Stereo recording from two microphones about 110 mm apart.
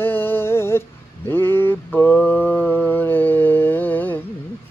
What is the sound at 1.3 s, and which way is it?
Mantra, 20° left (ahead or behind).